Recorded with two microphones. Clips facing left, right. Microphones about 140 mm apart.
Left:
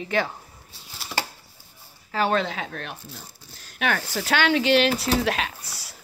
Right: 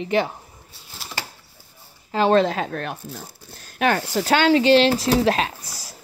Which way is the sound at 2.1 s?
25° right (ahead or behind).